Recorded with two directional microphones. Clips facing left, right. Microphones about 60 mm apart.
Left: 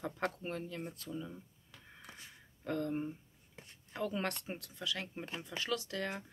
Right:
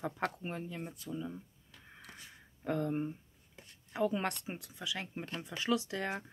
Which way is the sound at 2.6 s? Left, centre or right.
Centre.